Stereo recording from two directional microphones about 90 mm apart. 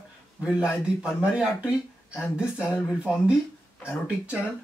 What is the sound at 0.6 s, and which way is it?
Speech, 10° right (ahead or behind).